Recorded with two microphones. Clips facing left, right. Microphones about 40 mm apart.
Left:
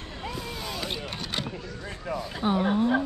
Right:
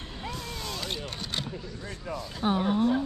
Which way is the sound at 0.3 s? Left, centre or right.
Centre.